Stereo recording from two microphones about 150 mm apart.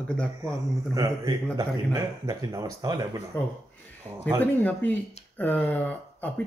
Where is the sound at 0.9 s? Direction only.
25° right (ahead or behind).